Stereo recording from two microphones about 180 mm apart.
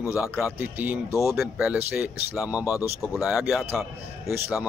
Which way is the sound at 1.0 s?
15° left (ahead or behind).